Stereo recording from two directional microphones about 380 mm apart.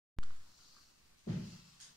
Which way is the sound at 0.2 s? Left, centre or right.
Centre.